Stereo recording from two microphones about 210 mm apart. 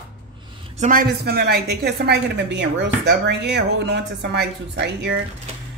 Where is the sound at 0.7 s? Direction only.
40° right (ahead or behind).